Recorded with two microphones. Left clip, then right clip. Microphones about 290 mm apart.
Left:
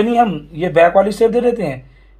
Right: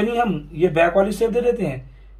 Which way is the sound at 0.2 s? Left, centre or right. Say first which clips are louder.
Left 4 dB; centre.